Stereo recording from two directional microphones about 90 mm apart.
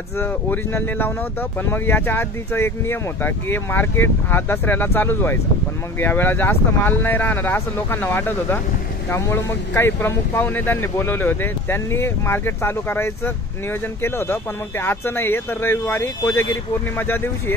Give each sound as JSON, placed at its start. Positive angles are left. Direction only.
{"t": 0.2, "sound": "speech", "side_deg": 25}